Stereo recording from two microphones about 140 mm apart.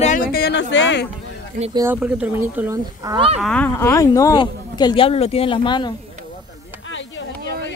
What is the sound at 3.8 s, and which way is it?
Speech, 20° left (ahead or behind).